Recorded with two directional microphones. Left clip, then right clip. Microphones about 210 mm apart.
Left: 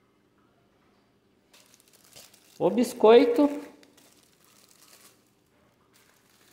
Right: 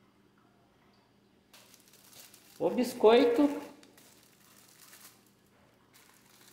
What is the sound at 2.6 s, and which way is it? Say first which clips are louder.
Speech: left 4 dB; 50° left (ahead or behind).